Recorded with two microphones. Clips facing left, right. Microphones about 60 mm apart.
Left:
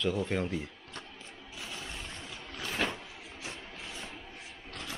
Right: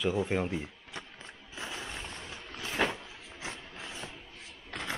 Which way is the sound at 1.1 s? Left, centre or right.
Right.